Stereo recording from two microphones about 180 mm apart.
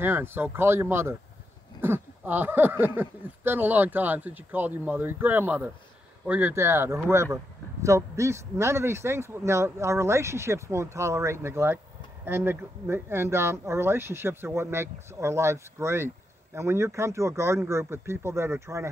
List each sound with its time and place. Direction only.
0.0 s speech: 10° right (ahead or behind)